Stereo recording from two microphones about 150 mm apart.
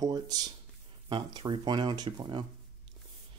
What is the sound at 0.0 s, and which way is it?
Speech, 25° right (ahead or behind).